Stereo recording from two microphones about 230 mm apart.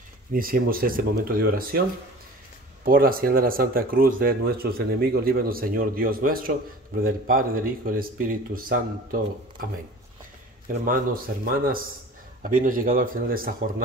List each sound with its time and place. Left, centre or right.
0.3 s speech: right
2.8 s speech: right
10.7 s speech: right